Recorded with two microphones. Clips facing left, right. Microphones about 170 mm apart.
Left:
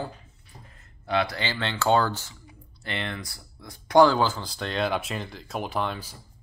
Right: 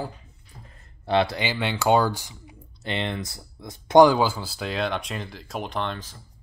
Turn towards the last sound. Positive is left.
turn(degrees=10)  # may be behind; listen again after turning